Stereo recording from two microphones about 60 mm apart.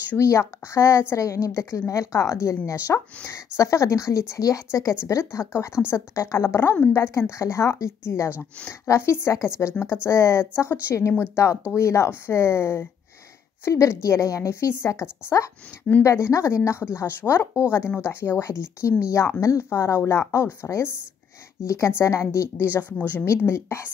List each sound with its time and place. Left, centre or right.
0.2 s a woman's voice: left
4.4 s a woman's voice: left
5.0 s speech: left
6.7 s speech: left
7.0 s a woman's voice: left
18.4 s a woman's voice: left
22.7 s speech: left
23.2 s speech: left